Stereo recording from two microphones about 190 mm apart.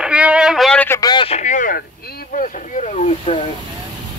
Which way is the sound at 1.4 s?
40° left (ahead or behind).